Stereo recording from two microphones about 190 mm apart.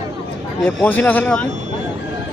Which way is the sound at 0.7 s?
5° left (ahead or behind).